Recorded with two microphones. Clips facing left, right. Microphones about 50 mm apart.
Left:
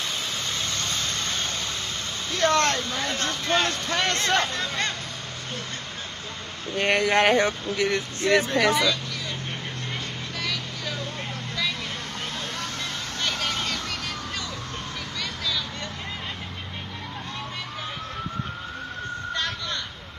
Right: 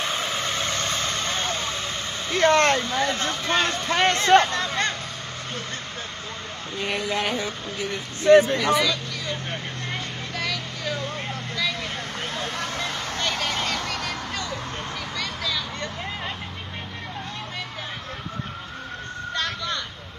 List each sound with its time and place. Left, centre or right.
0.8 s vehicle: right
2.3 s speech: centre
2.9 s speech: centre
4.5 s a sound: centre
6.8 s speech: left
8.7 s vehicle: centre
15.1 s a sound: centre
19.3 s vehicle: centre